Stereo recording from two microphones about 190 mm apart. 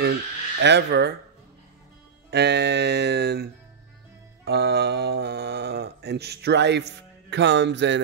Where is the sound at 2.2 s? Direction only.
60° right (ahead or behind).